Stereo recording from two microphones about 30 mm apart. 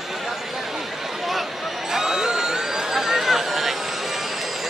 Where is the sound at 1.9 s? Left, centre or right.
Centre.